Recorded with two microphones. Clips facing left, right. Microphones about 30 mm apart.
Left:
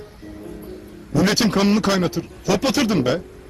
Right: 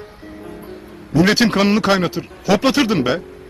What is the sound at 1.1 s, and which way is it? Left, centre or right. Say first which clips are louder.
A man's voice: right 4 dB; right.